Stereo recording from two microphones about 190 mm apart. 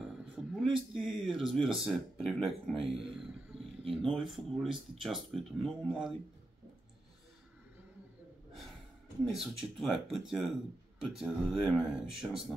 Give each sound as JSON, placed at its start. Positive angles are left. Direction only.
{"t": 0.0, "sound": "a sound", "side_deg": 0}
{"t": 1.0, "sound": "speech", "side_deg": 0}
{"t": 3.8, "sound": "speech", "side_deg": -30}
{"t": 4.1, "sound": "speech", "side_deg": 0}
{"t": 9.3, "sound": "speech", "side_deg": 0}